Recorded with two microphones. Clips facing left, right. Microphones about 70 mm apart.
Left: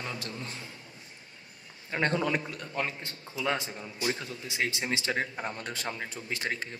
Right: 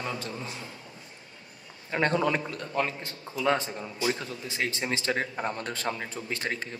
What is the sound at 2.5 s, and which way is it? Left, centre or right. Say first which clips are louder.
Speech: right 4 dB; right.